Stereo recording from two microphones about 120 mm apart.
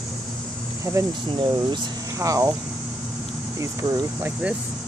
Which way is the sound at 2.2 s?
30° right (ahead or behind).